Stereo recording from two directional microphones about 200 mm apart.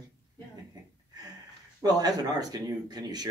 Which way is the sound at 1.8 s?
20° right (ahead or behind).